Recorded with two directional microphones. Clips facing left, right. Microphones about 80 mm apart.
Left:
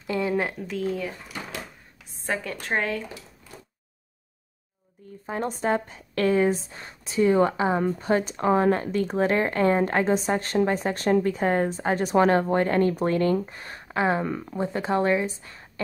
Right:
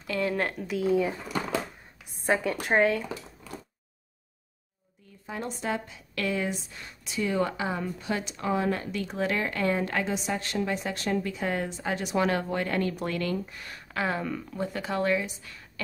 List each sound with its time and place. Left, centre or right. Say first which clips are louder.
0.2 s a woman's voice: left 2 dB; centre
0.6 s speech: right 3 dB; centre
2.2 s speech: right 3 dB; centre
5.2 s speech: left 6 dB; left